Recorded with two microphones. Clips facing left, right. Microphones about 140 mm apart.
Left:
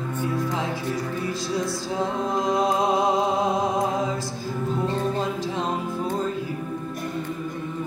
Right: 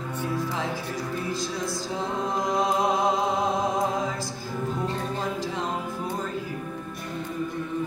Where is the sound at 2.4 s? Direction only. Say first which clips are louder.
Left 3 dB; 25° left (ahead or behind).